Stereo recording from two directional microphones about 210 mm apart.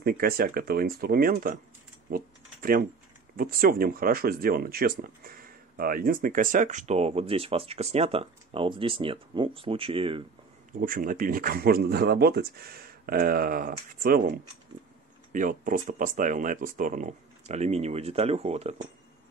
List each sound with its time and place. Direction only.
0.0 s speech: 45° right (ahead or behind)
2.0 s typing: 45° right (ahead or behind)
3.3 s speech: 45° right (ahead or behind); by 10.2 s 25° right (ahead or behind)
10.8 s speech: 40° right (ahead or behind)